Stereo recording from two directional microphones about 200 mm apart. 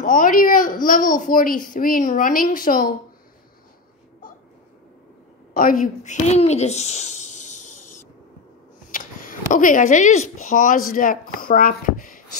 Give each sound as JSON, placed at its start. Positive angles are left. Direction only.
{"t": 0.0, "sound": "a woman's voice", "side_deg": 45}
{"t": 5.5, "sound": "a child's voice", "side_deg": 45}
{"t": 8.9, "sound": "speech", "side_deg": 45}